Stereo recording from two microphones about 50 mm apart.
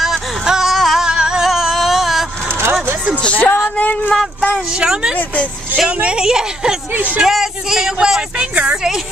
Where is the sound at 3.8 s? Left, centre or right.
Left.